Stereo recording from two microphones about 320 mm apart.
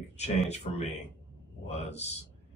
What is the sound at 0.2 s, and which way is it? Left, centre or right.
Speech, left.